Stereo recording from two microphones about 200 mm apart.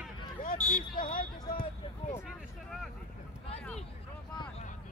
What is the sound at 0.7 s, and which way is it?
Speech, 45° left (ahead or behind).